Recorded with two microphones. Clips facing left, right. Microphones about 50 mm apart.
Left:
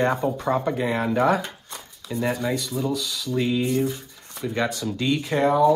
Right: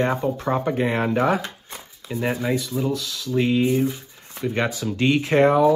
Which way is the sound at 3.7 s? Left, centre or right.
Centre.